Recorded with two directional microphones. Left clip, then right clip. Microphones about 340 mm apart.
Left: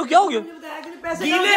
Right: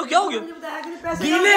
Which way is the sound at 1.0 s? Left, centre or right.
Left.